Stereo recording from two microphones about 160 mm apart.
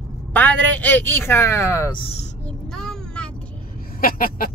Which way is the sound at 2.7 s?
5° left (ahead or behind).